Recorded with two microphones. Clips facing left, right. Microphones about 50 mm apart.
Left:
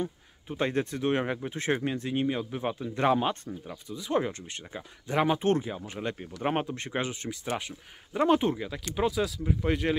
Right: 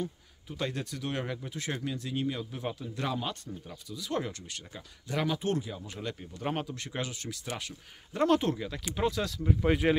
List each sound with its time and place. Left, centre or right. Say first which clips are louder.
0.0 s speech: left 3 dB; left
3.6 s speech: left 5 dB; left
9.1 s speech: left 2 dB; centre